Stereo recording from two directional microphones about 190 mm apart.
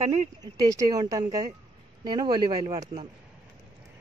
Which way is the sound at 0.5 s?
20° right (ahead or behind).